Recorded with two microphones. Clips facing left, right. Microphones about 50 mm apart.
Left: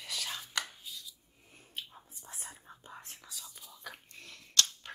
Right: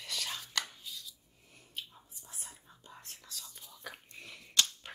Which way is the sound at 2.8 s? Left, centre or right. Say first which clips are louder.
Left 2 dB; left.